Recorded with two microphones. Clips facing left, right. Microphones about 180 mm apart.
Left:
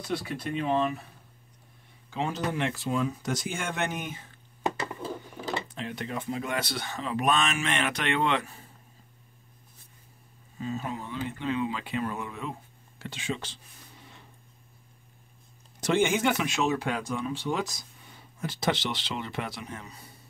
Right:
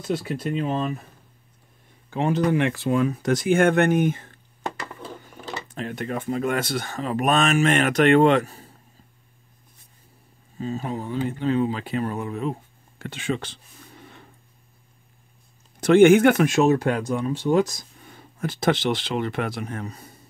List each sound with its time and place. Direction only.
0.6 s speech: 45° right (ahead or behind)
2.0 s speech: 55° right (ahead or behind)
5.8 s speech: 50° right (ahead or behind)
10.6 s speech: 35° right (ahead or behind)
13.0 s a sound: 55° right (ahead or behind)
15.8 s speech: 60° right (ahead or behind)